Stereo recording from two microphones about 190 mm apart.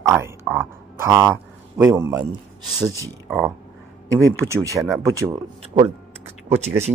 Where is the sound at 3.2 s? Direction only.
Centre (ahead or behind).